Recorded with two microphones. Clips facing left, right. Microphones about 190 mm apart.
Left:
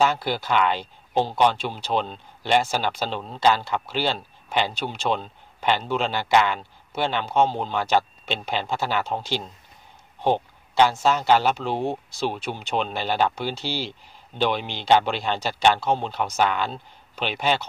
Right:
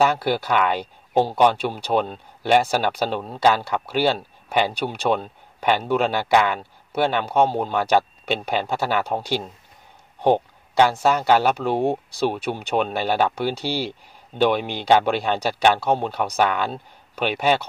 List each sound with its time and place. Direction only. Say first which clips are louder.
0.0 s speech: right 3 dB; 60° right (ahead or behind)